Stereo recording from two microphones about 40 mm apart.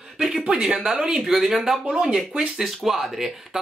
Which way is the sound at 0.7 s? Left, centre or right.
Centre.